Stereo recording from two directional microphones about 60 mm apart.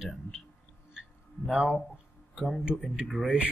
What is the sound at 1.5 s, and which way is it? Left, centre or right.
Speech, centre.